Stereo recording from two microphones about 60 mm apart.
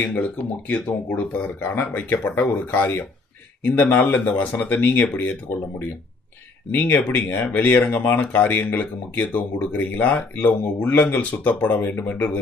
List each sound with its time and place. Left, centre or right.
0.7 s speech: left
1.9 s speech: left
6.7 s speech: left